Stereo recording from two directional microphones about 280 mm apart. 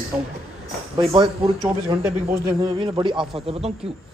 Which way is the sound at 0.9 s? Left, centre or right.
Centre.